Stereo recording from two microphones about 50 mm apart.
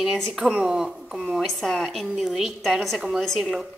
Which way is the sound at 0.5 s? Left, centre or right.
Centre.